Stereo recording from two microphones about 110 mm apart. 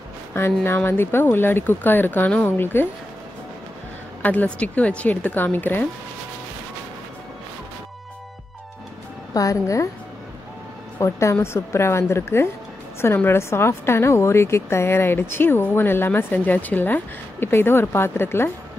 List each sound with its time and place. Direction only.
0.3 s a woman's voice: 20° left (ahead or behind)
4.2 s speech: 15° left (ahead or behind)
9.3 s speech: 30° left (ahead or behind)
11.0 s a woman's voice: 25° left (ahead or behind)